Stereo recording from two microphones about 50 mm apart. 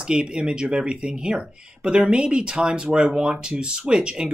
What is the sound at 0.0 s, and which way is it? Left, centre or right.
Speech, centre.